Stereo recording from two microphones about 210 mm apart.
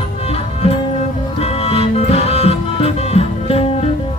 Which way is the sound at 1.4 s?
30° left (ahead or behind).